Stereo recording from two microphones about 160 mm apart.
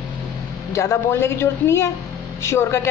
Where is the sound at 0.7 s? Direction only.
15° left (ahead or behind).